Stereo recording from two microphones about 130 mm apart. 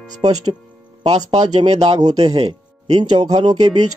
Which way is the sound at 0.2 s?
40° right (ahead or behind).